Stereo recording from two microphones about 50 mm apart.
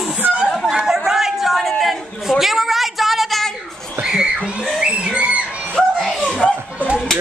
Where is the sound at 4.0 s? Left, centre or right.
Centre.